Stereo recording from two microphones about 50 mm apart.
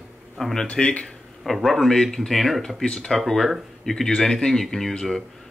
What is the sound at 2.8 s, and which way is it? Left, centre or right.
Speech, centre.